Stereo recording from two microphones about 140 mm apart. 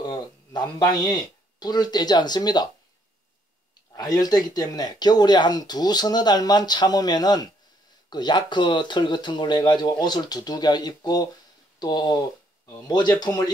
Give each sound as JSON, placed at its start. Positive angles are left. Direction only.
{"t": 0.0, "sound": "speech", "side_deg": 30}
{"t": 3.9, "sound": "speech", "side_deg": 25}